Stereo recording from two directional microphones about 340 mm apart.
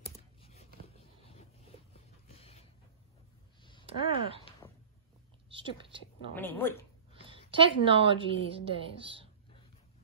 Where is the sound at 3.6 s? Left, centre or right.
Centre.